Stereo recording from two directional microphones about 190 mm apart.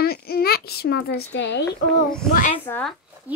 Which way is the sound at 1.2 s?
70° left (ahead or behind).